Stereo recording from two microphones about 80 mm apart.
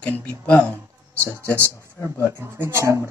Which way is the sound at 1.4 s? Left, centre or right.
Right.